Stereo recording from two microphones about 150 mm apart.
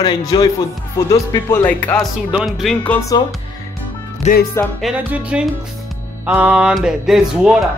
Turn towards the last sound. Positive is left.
turn(degrees=0)  # may be behind; listen again after turning